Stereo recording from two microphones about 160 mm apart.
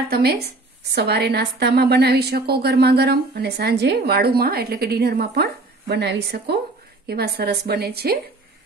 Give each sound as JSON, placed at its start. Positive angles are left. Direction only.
{"t": 0.1, "sound": "a woman's voice", "side_deg": -80}
{"t": 0.9, "sound": "a woman's voice", "side_deg": -90}